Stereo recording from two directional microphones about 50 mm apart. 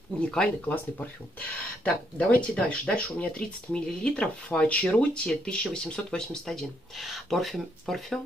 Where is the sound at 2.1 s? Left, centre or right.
Left.